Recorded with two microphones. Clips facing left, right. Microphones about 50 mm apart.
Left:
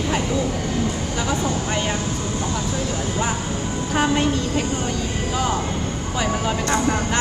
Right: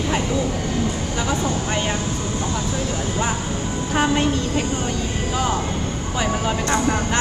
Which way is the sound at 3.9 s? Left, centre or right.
Right.